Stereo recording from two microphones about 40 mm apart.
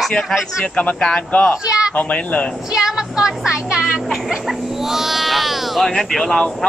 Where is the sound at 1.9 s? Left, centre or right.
Left.